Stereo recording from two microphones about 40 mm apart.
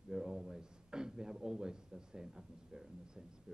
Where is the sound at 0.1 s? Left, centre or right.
Centre.